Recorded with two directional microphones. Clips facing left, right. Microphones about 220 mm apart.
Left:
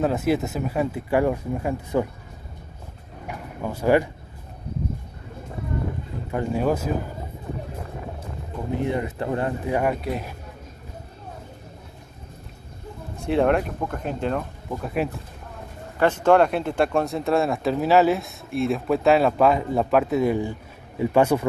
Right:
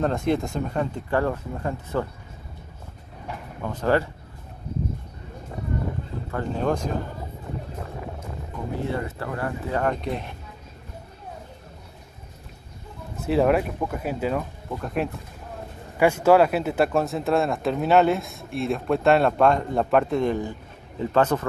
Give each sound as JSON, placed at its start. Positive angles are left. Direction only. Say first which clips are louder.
{"t": 0.0, "sound": "speech", "louder": "left 1 dB", "side_deg": 5}
{"t": 3.6, "sound": "speech", "louder": "left 3 dB", "side_deg": 10}
{"t": 6.3, "sound": "speech", "louder": "left 2 dB", "side_deg": 10}
{"t": 8.7, "sound": "speech", "louder": "left 4 dB", "side_deg": 15}
{"t": 13.2, "sound": "speech", "louder": "even", "side_deg": -5}
{"t": 14.7, "sound": "speech", "louder": "left 1 dB", "side_deg": 5}
{"t": 16.0, "sound": "speech", "louder": "even", "side_deg": -10}